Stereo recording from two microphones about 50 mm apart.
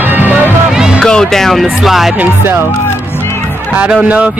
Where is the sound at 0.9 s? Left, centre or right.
Centre.